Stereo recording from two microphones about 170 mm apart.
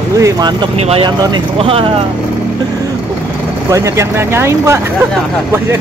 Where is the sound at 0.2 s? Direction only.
25° right (ahead or behind).